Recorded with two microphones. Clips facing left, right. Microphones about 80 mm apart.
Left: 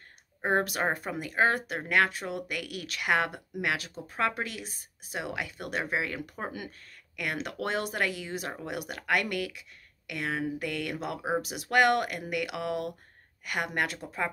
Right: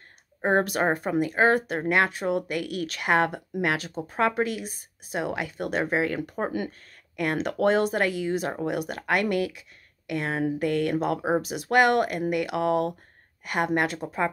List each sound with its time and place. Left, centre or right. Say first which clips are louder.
0.4 s speech: right 5 dB; right
4.1 s speech: right 6 dB; right